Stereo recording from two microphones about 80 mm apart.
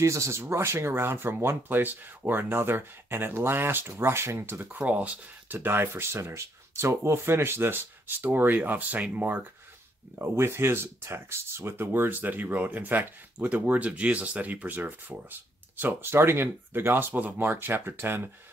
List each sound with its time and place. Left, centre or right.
0.0 s speech: right
10.1 s speech: right